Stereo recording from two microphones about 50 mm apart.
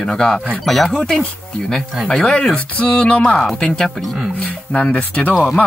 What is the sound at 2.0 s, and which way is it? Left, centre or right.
Speech, centre.